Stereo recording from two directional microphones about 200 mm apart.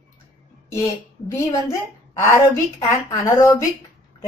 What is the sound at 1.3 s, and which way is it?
A woman's voice, 15° left (ahead or behind).